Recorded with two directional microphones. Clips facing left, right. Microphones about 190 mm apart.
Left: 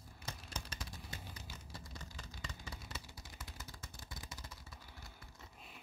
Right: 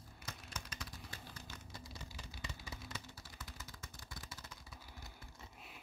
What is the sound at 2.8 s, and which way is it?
Typing, 10° left (ahead or behind).